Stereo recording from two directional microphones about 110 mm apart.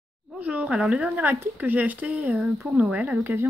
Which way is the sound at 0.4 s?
15° right (ahead or behind).